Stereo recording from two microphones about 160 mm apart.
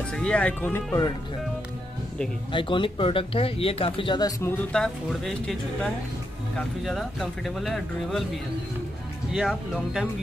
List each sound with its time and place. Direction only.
0.1 s speech: 5° left (ahead or behind)
2.5 s speech: 30° left (ahead or behind)
4.7 s speech: 5° left (ahead or behind)
9.3 s speech: centre (ahead or behind)